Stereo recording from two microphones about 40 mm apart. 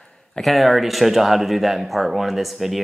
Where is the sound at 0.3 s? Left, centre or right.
Centre.